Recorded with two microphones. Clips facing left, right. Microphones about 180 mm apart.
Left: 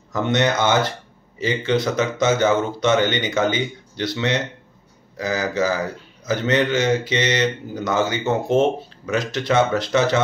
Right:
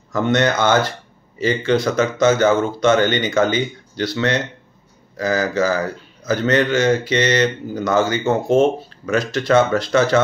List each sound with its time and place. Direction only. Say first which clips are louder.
0.1 s speech: right 2 dB; 20° left (ahead or behind)